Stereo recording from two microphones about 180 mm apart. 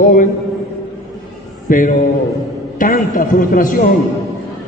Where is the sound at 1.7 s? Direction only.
50° left (ahead or behind).